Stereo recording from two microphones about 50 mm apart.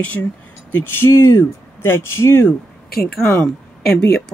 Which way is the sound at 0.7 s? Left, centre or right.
Left.